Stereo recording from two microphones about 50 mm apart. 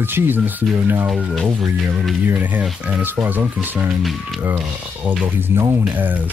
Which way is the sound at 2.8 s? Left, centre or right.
Right.